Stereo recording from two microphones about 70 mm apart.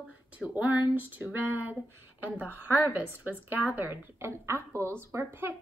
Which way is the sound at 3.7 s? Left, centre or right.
Right.